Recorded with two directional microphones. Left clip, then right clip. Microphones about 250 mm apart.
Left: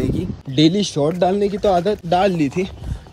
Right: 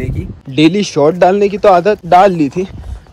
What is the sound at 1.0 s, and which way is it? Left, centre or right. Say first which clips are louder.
Speech: right 10 dB; right.